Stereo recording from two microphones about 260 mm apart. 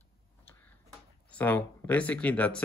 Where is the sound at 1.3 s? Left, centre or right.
Centre.